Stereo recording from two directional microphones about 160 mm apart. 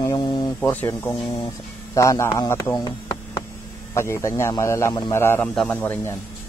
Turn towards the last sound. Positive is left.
turn(degrees=15)  # may be behind; listen again after turning